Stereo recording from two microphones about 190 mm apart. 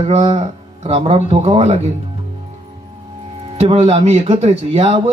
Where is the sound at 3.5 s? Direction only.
30° right (ahead or behind).